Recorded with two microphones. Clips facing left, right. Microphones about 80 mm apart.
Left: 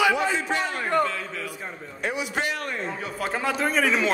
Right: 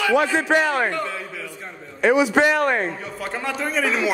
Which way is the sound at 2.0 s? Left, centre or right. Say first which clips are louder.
Right 11 dB; right.